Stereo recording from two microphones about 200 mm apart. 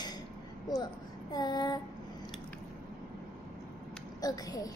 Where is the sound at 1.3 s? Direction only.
20° left (ahead or behind).